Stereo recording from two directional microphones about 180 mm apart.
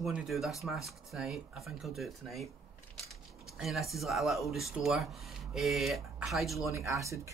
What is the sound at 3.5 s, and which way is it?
Speech, centre (ahead or behind).